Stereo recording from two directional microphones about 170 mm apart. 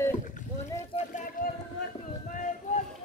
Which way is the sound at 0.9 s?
50° left (ahead or behind).